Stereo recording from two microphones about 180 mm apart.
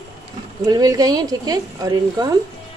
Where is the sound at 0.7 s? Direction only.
20° right (ahead or behind).